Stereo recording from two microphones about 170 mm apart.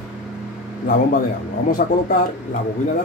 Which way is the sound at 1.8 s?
55° left (ahead or behind).